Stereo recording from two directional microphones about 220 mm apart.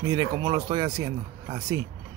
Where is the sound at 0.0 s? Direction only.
15° right (ahead or behind).